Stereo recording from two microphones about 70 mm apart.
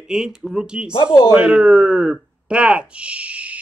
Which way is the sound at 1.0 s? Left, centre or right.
Left.